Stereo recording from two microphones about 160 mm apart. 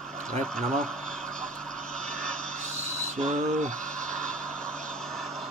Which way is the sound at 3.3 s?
50° right (ahead or behind).